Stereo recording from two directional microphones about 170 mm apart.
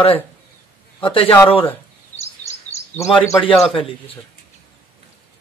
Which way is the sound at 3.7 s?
30° left (ahead or behind).